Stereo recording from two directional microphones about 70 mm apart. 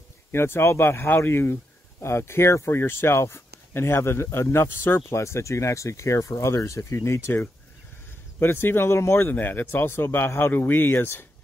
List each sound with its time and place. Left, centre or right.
0.3 s speech: left